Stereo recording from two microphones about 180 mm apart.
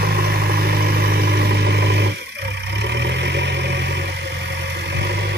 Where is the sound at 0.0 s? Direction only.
60° right (ahead or behind).